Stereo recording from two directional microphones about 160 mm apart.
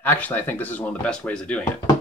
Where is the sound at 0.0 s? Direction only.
10° left (ahead or behind).